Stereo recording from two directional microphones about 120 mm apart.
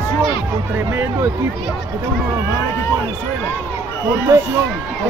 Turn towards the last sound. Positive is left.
turn(degrees=-25)  # may be behind; listen again after turning